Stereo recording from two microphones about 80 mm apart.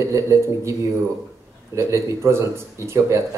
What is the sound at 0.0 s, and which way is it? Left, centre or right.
Speech, right.